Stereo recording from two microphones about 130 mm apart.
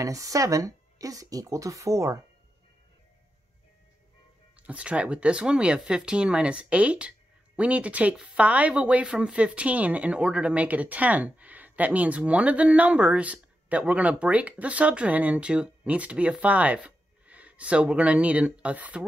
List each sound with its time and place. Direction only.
0.0 s speech: 25° right (ahead or behind)
4.6 s speech: 10° right (ahead or behind)